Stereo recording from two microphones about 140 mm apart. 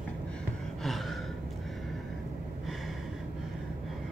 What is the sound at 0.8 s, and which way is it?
Gasp, centre (ahead or behind).